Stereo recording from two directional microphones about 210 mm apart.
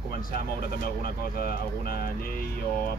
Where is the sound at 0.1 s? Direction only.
45° left (ahead or behind).